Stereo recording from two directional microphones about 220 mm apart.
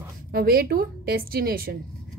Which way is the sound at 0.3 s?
45° right (ahead or behind).